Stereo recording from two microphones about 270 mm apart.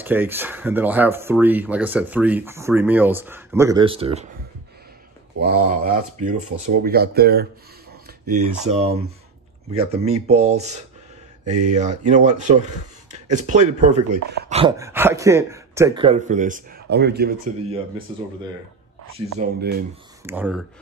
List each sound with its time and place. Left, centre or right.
0.0 s speech: centre
5.4 s speech: right
8.3 s speech: right
14.8 s speech: centre; by 17.3 s right
19.4 s speech: right
20.2 s speech: centre